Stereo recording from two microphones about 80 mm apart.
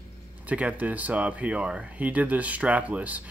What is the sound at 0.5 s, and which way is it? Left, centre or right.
Speech, centre.